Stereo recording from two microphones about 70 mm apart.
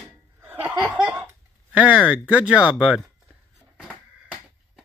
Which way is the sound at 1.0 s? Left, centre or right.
Right.